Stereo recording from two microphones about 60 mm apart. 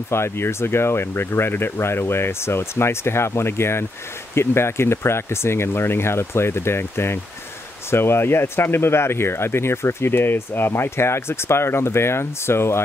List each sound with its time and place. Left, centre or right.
0.1 s speech: left